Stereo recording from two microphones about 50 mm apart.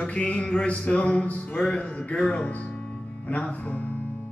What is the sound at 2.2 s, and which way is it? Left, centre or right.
Music, left.